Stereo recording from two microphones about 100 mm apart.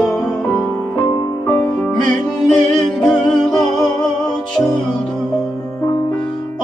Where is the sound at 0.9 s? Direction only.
35° left (ahead or behind).